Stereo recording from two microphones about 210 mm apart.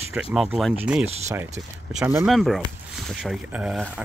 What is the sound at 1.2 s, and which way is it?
Speech, 10° right (ahead or behind).